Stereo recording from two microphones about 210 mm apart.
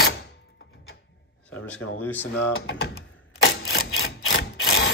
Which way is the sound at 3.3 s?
50° left (ahead or behind).